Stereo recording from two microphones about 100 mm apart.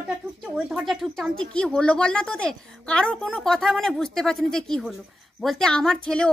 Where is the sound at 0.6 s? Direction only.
Centre (ahead or behind).